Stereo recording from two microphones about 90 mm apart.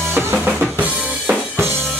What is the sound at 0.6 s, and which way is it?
Drum kit, 15° right (ahead or behind).